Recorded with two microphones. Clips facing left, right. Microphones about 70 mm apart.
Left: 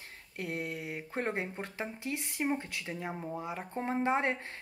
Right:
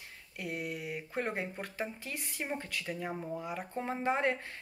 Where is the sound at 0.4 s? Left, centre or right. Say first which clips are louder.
Left 1 dB; left.